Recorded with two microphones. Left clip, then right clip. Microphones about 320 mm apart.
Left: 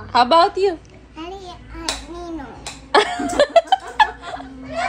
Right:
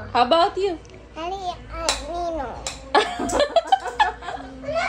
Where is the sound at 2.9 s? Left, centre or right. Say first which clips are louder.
Left 4 dB; left.